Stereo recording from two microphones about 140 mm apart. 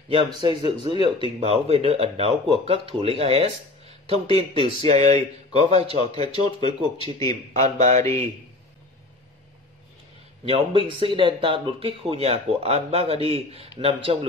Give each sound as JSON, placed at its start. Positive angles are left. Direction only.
{"t": 0.4, "sound": "speech", "side_deg": -30}
{"t": 1.4, "sound": "speech", "side_deg": -45}
{"t": 10.5, "sound": "speech", "side_deg": -40}